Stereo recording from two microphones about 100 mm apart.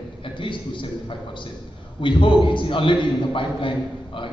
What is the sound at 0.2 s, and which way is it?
A man's voice, 55° left (ahead or behind).